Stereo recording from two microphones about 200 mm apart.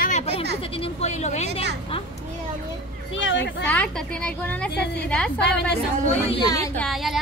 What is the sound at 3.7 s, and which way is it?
A woman's voice, 5° left (ahead or behind).